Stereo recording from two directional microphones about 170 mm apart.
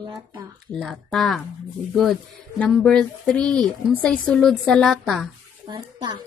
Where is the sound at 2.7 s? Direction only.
5° left (ahead or behind).